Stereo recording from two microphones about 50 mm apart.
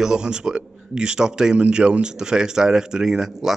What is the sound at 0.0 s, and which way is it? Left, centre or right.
A man's voice, centre.